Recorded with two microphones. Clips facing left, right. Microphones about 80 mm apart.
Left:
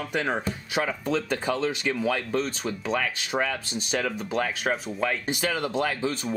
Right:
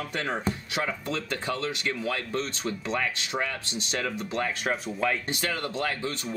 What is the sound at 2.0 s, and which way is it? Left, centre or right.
Speech, centre.